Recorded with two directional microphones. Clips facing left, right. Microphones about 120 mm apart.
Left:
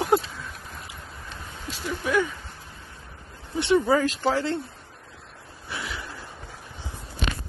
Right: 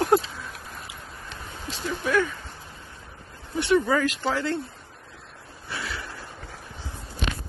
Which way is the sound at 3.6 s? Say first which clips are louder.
Left 1 dB; 30° left (ahead or behind).